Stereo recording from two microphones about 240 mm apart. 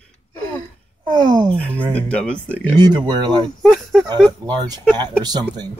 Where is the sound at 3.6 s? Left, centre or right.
Centre.